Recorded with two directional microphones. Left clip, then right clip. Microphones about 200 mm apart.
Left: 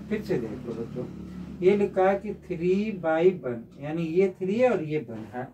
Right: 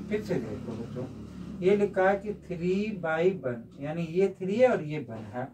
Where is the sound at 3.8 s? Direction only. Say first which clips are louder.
Left 3 dB; 10° left (ahead or behind).